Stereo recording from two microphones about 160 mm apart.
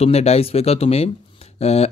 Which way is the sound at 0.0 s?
40° left (ahead or behind).